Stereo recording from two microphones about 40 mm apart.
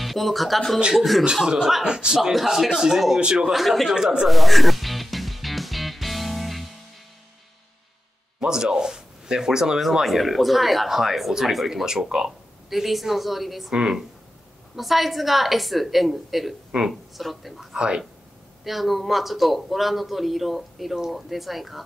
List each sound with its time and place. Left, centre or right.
0.0 s speech: centre
1.3 s a man's voice: centre
2.3 s a man's voice: centre
3.5 s speech: centre
3.9 s speech: centre
4.3 s music: centre
8.5 s speech: centre
9.8 s speech: centre
12.3 s speech: centre
13.7 s speech: centre
14.8 s speech: centre
17.7 s a man's voice: right
18.6 s speech: centre